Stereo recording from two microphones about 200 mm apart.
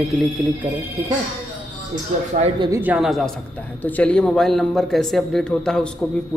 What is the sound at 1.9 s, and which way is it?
Speech, 40° right (ahead or behind).